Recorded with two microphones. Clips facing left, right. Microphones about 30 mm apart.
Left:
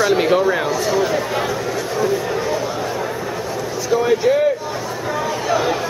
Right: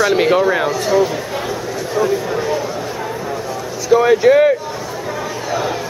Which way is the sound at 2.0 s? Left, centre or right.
Centre.